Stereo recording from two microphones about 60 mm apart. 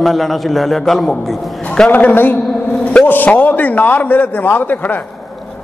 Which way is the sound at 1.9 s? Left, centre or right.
Left.